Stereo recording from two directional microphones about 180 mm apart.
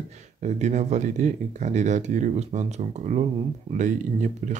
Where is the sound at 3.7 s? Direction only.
45° right (ahead or behind).